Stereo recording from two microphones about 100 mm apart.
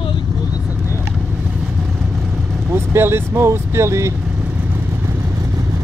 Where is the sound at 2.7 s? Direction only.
25° right (ahead or behind).